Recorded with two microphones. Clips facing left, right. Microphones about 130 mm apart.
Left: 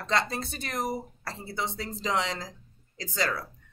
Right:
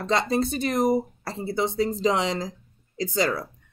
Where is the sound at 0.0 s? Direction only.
15° right (ahead or behind).